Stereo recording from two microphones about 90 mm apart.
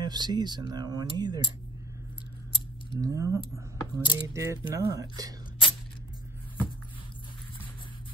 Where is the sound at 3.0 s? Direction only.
40° right (ahead or behind).